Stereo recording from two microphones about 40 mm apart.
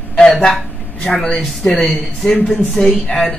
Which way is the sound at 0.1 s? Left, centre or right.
Left.